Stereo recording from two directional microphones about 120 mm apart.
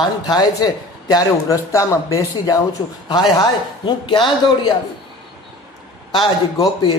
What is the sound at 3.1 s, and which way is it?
A man's voice, 35° left (ahead or behind).